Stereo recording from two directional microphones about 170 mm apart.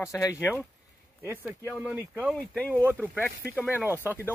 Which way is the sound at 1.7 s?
10° right (ahead or behind).